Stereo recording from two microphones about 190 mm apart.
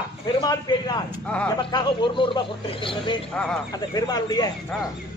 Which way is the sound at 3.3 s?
5° left (ahead or behind).